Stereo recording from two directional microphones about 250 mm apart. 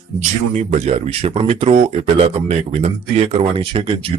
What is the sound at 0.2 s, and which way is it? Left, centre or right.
Speech, right.